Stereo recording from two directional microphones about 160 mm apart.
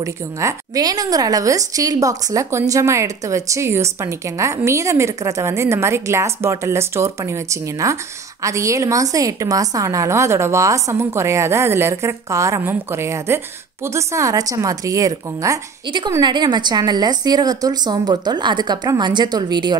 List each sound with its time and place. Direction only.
0.0 s a woman's voice: 20° right (ahead or behind)